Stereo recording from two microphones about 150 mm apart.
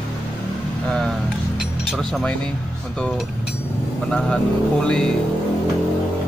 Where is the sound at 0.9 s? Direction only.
5° left (ahead or behind).